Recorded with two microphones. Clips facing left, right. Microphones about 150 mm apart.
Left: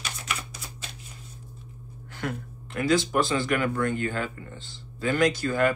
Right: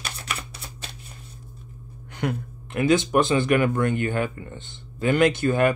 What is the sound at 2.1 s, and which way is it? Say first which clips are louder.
Speech: right 5 dB; 20° right (ahead or behind).